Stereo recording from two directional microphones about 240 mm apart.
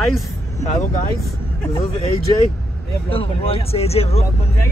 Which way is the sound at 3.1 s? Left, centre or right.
Left.